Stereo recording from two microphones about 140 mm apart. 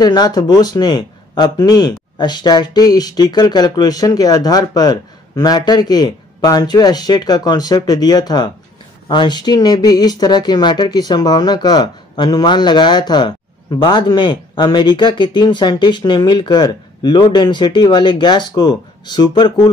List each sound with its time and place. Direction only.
0.0 s speech: 30° left (ahead or behind)